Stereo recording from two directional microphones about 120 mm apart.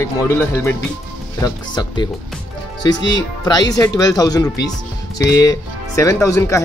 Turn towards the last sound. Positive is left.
turn(degrees=25)  # may be behind; listen again after turning